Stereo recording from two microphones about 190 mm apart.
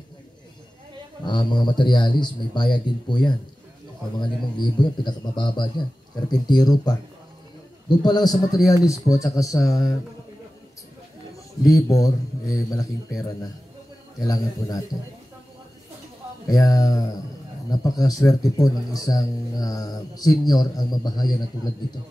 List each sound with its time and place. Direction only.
1.2 s speech: 25° left (ahead or behind)
4.2 s a man's voice: 25° left (ahead or behind)
11.6 s a man's voice: 20° left (ahead or behind)
16.4 s speech: 20° left (ahead or behind)